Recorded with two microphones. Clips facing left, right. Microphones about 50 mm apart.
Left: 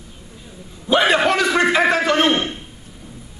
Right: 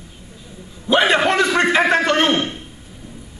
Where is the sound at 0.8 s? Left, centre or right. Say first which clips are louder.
Even; centre.